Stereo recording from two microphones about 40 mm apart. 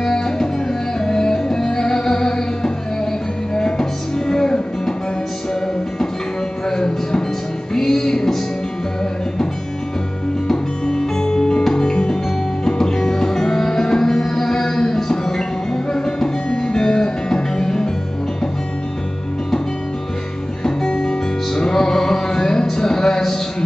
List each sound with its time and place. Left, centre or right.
0.0 s music: centre
6.7 s music: centre
10.5 s music: centre
20.6 s music: centre